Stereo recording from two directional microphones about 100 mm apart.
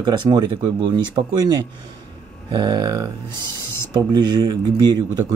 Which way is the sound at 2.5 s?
45° right (ahead or behind).